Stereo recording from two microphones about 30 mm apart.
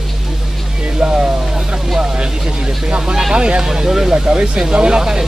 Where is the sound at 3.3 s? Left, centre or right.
Right.